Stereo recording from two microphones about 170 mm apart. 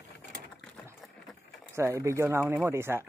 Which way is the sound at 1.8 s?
15° right (ahead or behind).